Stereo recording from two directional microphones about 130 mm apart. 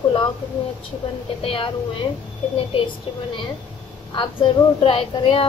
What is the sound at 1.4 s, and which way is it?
Speech, 45° left (ahead or behind).